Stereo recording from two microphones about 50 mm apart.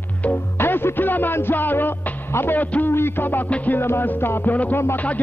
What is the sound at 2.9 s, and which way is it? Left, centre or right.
Music, left.